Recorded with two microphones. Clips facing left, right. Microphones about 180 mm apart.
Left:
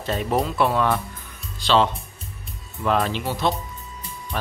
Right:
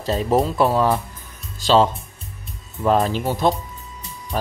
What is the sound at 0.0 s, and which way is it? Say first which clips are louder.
Speech: right 4 dB; 35° right (ahead or behind).